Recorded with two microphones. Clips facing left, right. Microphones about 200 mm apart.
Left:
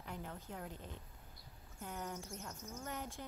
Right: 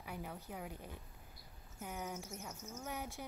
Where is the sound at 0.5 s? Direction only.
10° right (ahead or behind).